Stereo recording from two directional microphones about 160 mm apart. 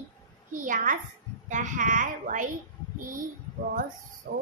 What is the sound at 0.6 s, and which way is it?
A woman's voice, 50° right (ahead or behind).